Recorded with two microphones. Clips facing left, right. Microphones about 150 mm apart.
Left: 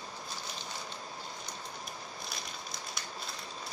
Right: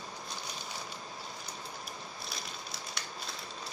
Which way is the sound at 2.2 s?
Centre (ahead or behind).